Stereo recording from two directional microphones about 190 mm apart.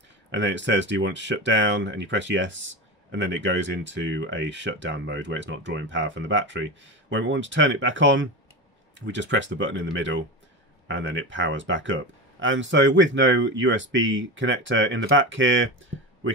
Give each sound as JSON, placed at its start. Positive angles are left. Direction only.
{"t": 0.3, "sound": "speech", "side_deg": -70}